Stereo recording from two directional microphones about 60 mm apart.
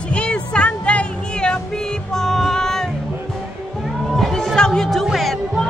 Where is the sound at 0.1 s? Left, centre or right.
Centre.